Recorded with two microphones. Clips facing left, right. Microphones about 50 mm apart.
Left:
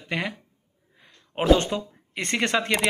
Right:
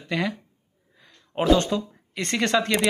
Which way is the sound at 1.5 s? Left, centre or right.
Left.